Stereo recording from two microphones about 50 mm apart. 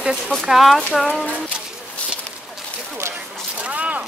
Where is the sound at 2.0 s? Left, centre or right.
Left.